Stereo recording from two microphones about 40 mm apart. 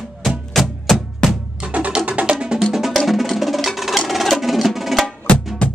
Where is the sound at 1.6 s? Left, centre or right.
Right.